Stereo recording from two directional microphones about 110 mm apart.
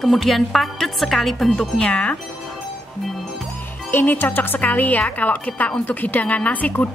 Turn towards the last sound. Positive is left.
turn(degrees=15)  # may be behind; listen again after turning